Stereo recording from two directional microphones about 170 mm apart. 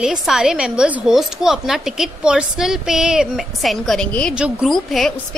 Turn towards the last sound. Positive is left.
turn(degrees=0)  # may be behind; listen again after turning